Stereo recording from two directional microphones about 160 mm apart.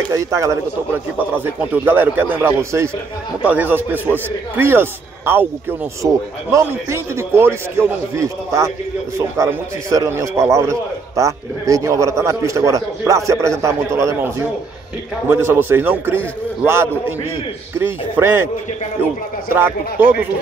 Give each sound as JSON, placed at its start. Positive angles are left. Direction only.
{"t": 0.1, "sound": "a man's voice", "side_deg": -20}
{"t": 19.5, "sound": "a man's voice", "side_deg": -15}